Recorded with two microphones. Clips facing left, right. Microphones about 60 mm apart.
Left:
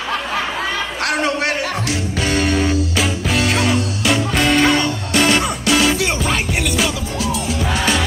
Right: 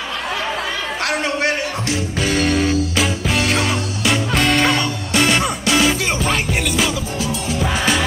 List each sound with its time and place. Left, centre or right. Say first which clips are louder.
1.0 s music: left 1 dB; right
2.2 s music: even; centre